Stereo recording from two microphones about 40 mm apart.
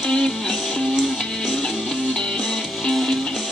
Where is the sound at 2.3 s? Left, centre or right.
Centre.